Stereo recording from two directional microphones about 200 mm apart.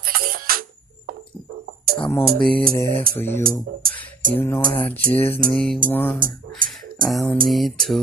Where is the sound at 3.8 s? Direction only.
45° right (ahead or behind).